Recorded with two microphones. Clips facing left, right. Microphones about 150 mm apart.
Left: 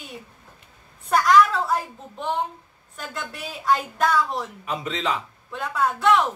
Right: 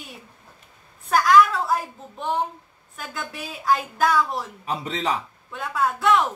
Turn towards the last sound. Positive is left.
turn(degrees=0)  # may be behind; listen again after turning